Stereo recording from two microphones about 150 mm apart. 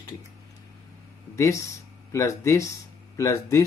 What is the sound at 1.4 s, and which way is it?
Speech, 20° left (ahead or behind).